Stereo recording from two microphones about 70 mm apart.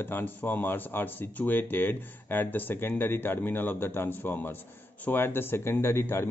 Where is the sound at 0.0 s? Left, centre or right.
Left.